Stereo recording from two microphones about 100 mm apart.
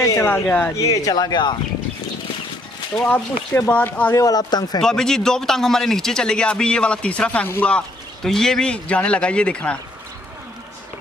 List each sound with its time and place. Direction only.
0.0 s a sound: 30° left (ahead or behind)
0.3 s a man's voice: 15° left (ahead or behind)
0.7 s speech: 35° left (ahead or behind)
3.1 s a man's voice: 15° left (ahead or behind)
4.1 s speech: 35° left (ahead or behind)
4.8 s a man's voice: 5° left (ahead or behind)